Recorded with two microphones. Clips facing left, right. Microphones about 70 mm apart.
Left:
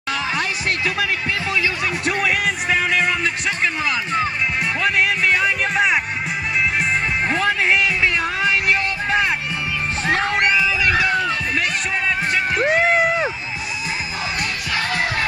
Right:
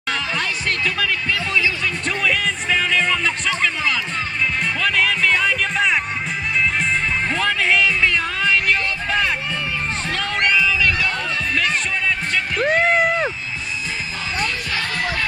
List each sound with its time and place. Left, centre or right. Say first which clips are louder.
0.4 s music: left 1 dB; centre
7.2 s music: left 2 dB; centre
10.0 s music: left 5 dB; left
10.3 s music: left 1 dB; centre
12.5 s music: right 1 dB; centre